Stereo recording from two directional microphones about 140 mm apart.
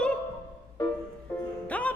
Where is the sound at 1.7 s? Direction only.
10° left (ahead or behind).